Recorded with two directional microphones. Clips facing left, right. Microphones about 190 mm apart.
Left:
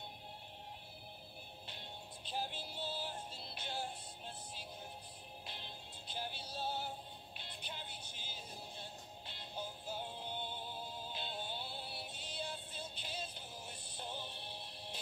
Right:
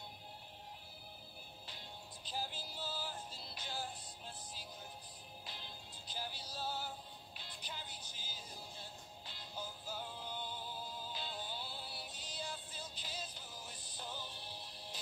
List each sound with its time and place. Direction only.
1.7 s music: 60° left (ahead or behind)
2.7 s music: 25° left (ahead or behind)
3.3 s music: 60° left (ahead or behind)
5.5 s music: 60° left (ahead or behind)
6.5 s music: 25° left (ahead or behind)
7.4 s music: 60° left (ahead or behind)
9.6 s synthetic singing: 25° left (ahead or behind)
12.1 s music: 60° left (ahead or behind)
13.9 s music: 25° left (ahead or behind)
14.2 s music: 60° left (ahead or behind)